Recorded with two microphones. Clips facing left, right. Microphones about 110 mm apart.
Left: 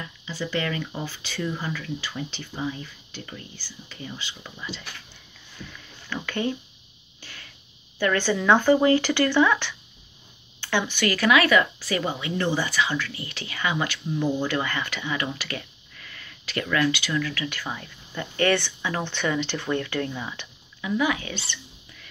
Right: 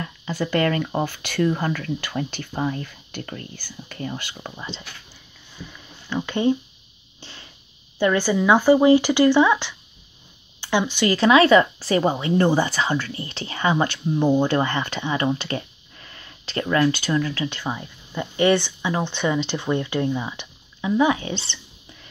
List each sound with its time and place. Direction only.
0.0 s speech: 50° right (ahead or behind)
4.6 s speech: 25° right (ahead or behind)
5.6 s a sound: 15° right (ahead or behind)
8.0 s speech: 15° right (ahead or behind)